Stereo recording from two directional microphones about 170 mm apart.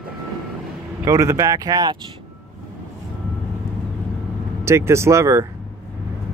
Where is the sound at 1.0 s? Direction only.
20° right (ahead or behind).